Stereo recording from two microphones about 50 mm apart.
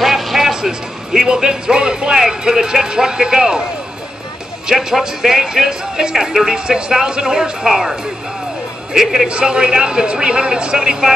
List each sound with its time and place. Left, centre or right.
0.0 s speech: centre
4.6 s speech: centre
9.3 s speech: centre